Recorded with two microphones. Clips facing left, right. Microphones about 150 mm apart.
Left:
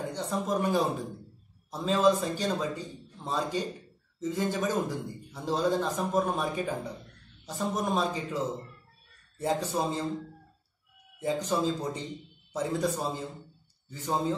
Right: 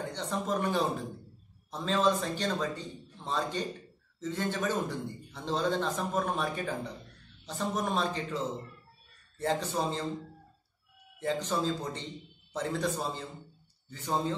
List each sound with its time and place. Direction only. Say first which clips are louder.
0.0 s speech: left 2 dB; 10° left (ahead or behind)
11.1 s speech: left 2 dB; 10° left (ahead or behind)